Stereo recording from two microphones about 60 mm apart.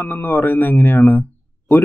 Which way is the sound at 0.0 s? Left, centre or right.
Left.